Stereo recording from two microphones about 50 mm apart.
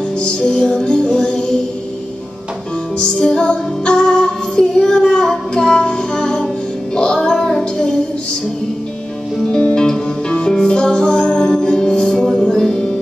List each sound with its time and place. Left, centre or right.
0.4 s music: centre
3.0 s music: centre
7.0 s child singing: centre
9.4 s music: centre